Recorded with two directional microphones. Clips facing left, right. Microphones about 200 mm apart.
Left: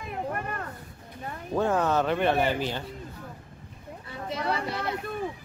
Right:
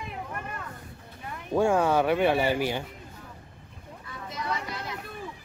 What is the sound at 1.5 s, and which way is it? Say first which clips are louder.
Speech: right 2 dB; 10° right (ahead or behind).